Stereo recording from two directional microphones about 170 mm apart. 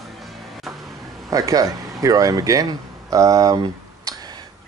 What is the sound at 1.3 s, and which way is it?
Speech, 20° right (ahead or behind).